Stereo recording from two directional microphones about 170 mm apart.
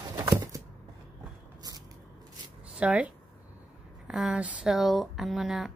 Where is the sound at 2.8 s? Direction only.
5° right (ahead or behind).